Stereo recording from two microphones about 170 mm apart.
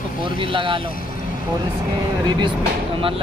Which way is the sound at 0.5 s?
30° right (ahead or behind).